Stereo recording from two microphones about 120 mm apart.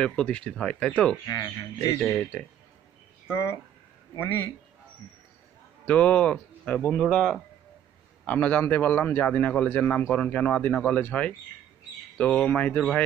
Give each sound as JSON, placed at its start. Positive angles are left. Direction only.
{"t": 0.0, "sound": "a man's voice", "side_deg": 10}
{"t": 1.2, "sound": "speech", "side_deg": 35}
{"t": 2.0, "sound": "a man's voice", "side_deg": 10}
{"t": 3.3, "sound": "speech", "side_deg": 20}
{"t": 5.9, "sound": "a man's voice", "side_deg": 15}